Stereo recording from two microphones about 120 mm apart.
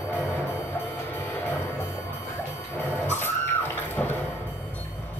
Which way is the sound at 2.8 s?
15° left (ahead or behind).